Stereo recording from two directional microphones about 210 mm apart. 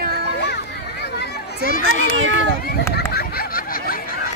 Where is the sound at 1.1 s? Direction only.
40° left (ahead or behind).